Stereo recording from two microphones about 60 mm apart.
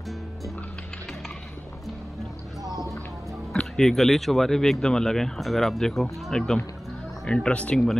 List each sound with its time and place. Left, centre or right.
2.6 s a sound: centre
3.7 s speech: centre
7.7 s speech: centre